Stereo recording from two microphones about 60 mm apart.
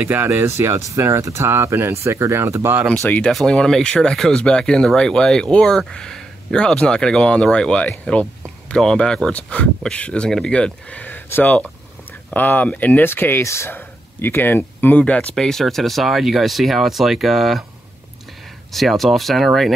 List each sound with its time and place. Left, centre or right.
0.0 s speech: right
0.4 s speech: right
3.4 s speech: centre
8.0 s a sound: left
8.7 s speech: centre
13.0 s speech: left
13.4 s speech: left
13.7 s speech: left
15.3 s speech: centre
18.7 s speech: centre